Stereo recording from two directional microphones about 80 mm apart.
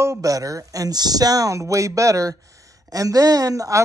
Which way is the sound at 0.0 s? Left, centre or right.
Right.